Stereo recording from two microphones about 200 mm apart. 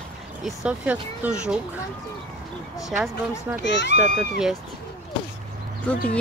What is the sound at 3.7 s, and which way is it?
Speech, 60° left (ahead or behind).